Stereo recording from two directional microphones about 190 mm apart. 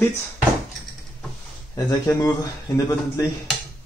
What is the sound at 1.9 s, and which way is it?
Speech, 20° left (ahead or behind).